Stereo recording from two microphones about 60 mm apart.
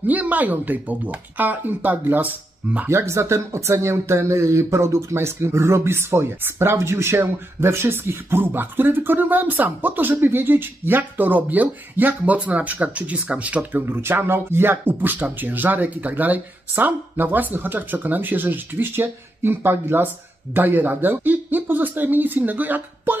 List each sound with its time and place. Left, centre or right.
0.0 s speech: right
2.9 s speech: right
13.8 s speech: right